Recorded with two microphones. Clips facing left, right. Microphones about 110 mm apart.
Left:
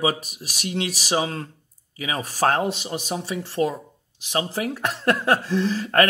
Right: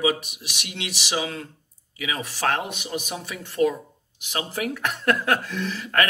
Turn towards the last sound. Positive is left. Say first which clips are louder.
# left 5 dB
turn(degrees=35)  # may be behind; listen again after turning